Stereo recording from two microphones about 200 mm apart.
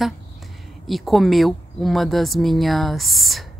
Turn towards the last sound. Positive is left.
turn(degrees=0)  # may be behind; listen again after turning